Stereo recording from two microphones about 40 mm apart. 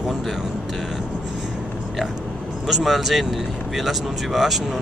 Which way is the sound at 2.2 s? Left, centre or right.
Left.